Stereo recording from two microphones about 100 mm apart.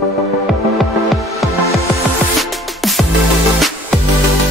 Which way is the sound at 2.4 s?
Centre (ahead or behind).